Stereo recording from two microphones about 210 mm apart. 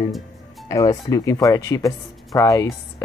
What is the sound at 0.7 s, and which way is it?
Speech, 15° left (ahead or behind).